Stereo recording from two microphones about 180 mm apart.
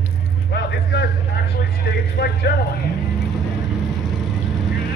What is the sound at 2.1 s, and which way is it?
Speech, 60° left (ahead or behind).